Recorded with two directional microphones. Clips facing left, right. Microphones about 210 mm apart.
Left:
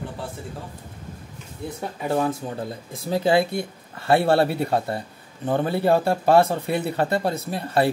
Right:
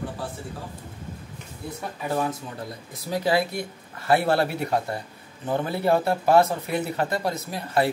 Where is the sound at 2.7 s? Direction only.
25° left (ahead or behind).